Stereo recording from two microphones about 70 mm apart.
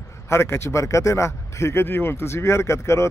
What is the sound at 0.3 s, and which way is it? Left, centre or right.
A man's voice, left.